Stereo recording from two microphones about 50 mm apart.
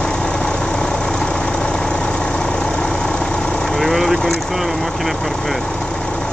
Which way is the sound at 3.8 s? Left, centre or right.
Centre.